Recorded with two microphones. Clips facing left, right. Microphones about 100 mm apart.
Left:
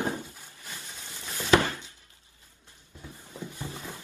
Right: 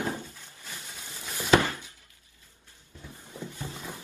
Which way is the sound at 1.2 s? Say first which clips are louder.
Even; 10° right (ahead or behind).